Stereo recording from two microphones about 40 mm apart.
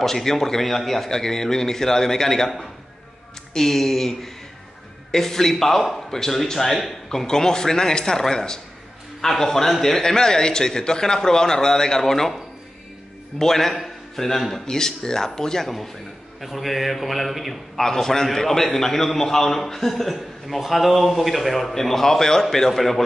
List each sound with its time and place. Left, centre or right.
0.0 s a man's voice: centre
3.5 s a man's voice: centre
13.4 s a man's voice: centre
16.3 s a man's voice: centre
17.8 s a man's voice: centre